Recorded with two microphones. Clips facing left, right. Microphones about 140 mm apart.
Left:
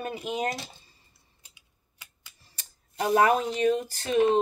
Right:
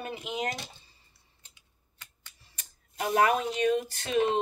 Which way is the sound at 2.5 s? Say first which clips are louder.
Left 4 dB; 30° left (ahead or behind).